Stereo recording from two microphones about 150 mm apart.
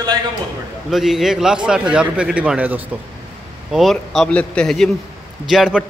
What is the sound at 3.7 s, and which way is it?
A man's voice, centre (ahead or behind).